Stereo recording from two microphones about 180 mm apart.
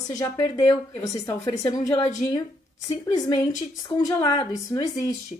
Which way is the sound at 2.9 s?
25° left (ahead or behind).